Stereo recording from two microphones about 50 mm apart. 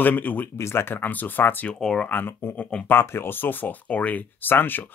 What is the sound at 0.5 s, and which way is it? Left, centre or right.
Speech, left.